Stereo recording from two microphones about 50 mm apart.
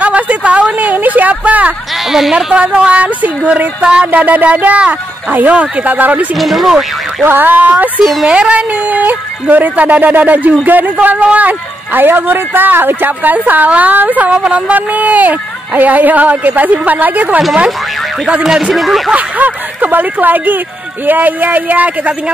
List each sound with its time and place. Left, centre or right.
0.0 s a woman's voice: right
2.0 s speech: centre
2.3 s speech: right
4.2 s speech: right
6.3 s speech: centre
7.2 s speech: right
8.0 s speech: centre
8.3 s speech: right
18.4 s speech: centre
19.1 s speech: right